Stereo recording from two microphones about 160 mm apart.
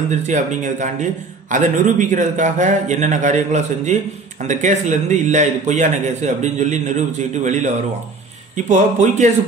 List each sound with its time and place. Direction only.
0.1 s a man's voice: 50° right (ahead or behind)